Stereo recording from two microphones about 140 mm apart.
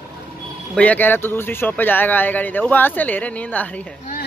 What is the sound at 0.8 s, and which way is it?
Speech, 10° left (ahead or behind).